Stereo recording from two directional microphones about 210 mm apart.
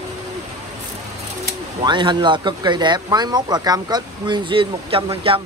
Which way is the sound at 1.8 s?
20° right (ahead or behind).